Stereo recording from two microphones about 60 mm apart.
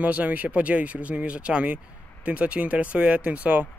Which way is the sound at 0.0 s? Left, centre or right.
Right.